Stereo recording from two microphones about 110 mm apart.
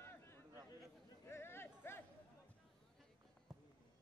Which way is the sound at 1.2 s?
20° left (ahead or behind).